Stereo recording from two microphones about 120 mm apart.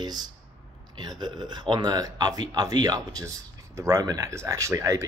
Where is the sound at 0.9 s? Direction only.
35° right (ahead or behind).